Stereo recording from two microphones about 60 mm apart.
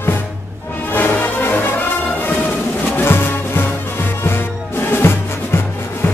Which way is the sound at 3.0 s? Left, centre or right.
Left.